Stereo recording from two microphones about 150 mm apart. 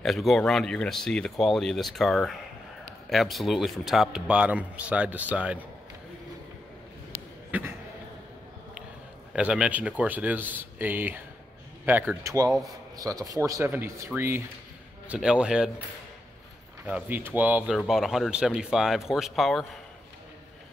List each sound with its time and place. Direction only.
0.0 s speech: centre (ahead or behind)
9.3 s speech: 5° right (ahead or behind)
16.8 s speech: 10° right (ahead or behind)